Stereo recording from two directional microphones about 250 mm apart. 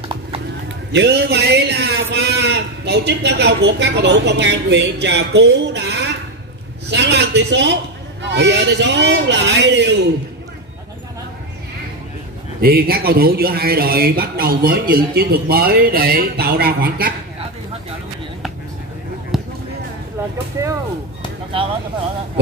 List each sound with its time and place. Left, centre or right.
0.9 s a man's voice: right
12.5 s speech: right
19.3 s basketball bounce: centre